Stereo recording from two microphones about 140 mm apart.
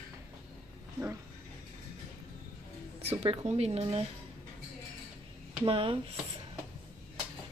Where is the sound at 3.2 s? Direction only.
45° right (ahead or behind).